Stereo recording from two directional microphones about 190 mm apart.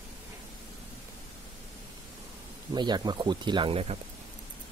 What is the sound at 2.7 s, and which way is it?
Speech, 25° right (ahead or behind).